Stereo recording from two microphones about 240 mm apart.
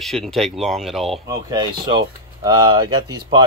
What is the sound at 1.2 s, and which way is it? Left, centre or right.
Speech, centre.